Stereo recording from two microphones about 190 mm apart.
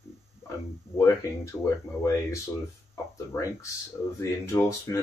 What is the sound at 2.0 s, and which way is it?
Speech, 15° left (ahead or behind).